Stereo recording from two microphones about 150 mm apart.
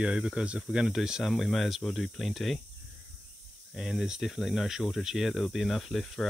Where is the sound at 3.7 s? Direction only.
5° right (ahead or behind).